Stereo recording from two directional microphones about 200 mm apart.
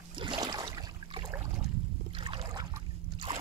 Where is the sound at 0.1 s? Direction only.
25° right (ahead or behind).